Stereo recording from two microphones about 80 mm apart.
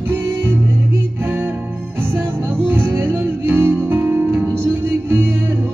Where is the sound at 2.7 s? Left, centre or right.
Right.